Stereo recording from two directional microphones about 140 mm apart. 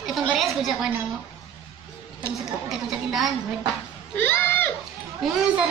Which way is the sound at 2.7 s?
Centre (ahead or behind).